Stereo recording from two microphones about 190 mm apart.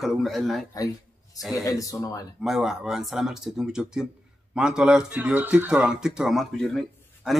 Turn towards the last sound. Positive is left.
turn(degrees=0)  # may be behind; listen again after turning